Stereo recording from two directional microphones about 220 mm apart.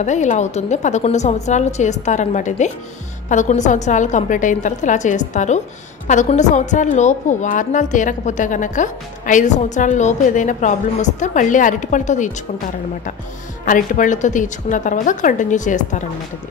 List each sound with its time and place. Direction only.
0.0 s a woman's voice: 35° left (ahead or behind)
13.7 s a woman's voice: 35° left (ahead or behind)